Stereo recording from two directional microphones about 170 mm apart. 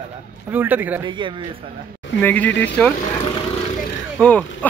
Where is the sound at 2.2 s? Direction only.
10° left (ahead or behind).